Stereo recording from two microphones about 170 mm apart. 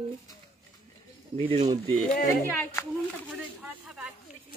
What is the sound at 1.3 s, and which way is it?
Speech, 35° right (ahead or behind).